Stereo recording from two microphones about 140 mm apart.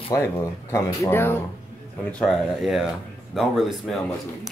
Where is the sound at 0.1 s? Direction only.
20° left (ahead or behind).